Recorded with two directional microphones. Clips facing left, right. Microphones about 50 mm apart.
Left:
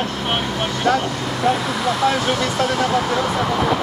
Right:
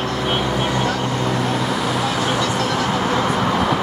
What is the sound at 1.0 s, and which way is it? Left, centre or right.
Vehicle, right.